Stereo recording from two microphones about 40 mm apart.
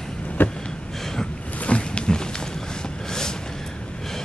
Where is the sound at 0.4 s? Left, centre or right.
Left.